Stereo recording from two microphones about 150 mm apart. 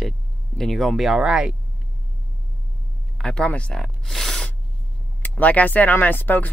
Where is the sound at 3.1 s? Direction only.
5° left (ahead or behind).